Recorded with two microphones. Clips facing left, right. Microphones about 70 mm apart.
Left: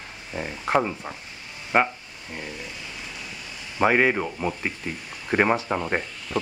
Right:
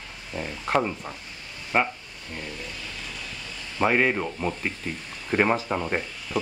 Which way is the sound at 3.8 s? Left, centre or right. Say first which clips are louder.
Left 2 dB; centre.